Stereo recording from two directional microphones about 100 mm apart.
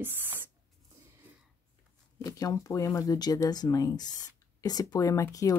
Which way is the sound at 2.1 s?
35° left (ahead or behind).